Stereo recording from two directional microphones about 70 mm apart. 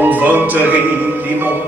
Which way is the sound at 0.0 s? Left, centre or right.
Right.